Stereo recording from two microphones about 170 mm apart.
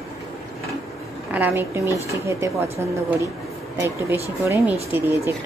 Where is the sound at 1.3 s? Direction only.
10° right (ahead or behind).